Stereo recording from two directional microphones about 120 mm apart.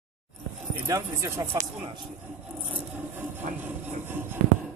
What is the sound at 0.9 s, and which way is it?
Speech, 25° right (ahead or behind).